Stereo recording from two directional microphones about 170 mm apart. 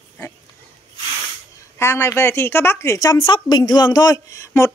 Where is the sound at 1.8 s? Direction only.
15° left (ahead or behind).